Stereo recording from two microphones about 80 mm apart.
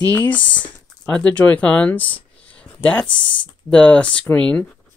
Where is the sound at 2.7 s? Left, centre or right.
Left.